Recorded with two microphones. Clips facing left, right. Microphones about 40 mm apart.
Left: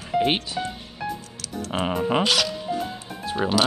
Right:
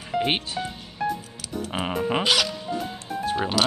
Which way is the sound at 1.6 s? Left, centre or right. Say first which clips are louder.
Left 2 dB; centre.